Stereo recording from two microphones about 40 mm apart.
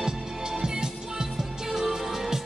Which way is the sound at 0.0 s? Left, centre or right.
Centre.